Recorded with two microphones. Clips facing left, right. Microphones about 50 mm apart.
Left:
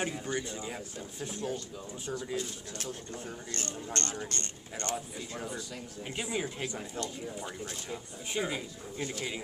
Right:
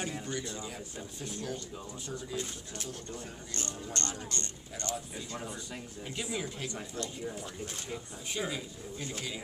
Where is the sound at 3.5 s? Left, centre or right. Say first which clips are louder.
Left 1 dB; left.